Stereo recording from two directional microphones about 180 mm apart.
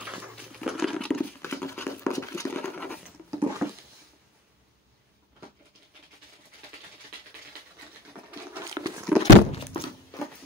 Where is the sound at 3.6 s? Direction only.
15° right (ahead or behind).